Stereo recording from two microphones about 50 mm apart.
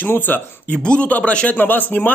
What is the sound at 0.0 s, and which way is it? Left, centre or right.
Speech, left.